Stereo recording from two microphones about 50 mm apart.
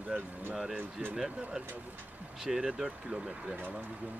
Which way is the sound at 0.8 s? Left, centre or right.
Right.